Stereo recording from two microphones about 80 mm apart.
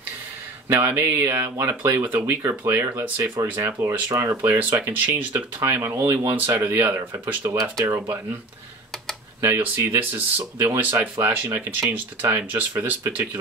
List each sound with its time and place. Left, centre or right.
0.7 s speech: right
4.5 s speech: right
7.4 s speech: right
9.4 s speech: right